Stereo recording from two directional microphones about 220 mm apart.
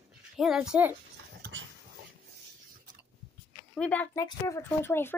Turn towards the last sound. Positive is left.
turn(degrees=10)  # may be behind; listen again after turning